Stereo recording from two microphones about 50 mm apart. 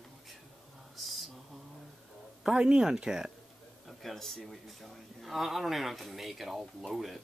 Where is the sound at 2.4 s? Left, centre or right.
Centre.